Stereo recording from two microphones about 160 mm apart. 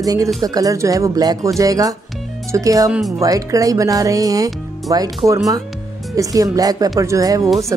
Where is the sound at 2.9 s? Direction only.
Centre (ahead or behind).